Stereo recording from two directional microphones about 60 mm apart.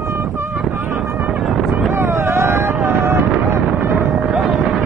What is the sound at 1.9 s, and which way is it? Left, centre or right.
Vehicle, right.